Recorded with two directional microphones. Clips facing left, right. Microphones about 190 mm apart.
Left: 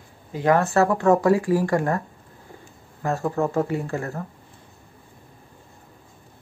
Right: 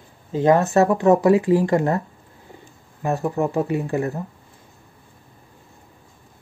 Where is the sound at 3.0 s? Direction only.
15° right (ahead or behind).